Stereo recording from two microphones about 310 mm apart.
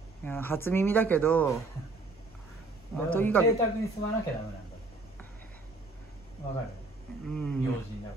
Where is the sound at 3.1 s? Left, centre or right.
Centre.